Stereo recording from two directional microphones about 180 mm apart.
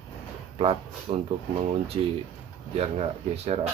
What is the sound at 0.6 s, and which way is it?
Speech, 30° right (ahead or behind).